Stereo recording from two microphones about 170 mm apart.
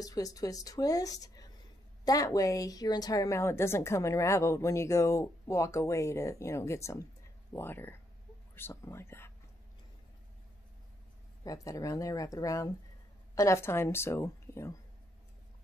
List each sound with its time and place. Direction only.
0.0 s a woman's voice: 20° left (ahead or behind)
11.4 s a woman's voice: 20° left (ahead or behind)